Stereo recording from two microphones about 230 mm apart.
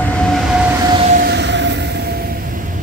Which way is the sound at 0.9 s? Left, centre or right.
Right.